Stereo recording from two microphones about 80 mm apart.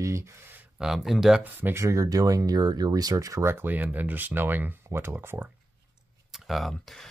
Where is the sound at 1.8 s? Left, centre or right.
Right.